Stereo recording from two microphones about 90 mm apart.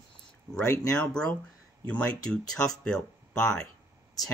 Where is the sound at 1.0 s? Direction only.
10° left (ahead or behind).